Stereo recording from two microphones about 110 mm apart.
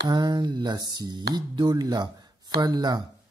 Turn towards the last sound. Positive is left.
turn(degrees=-40)  # may be behind; listen again after turning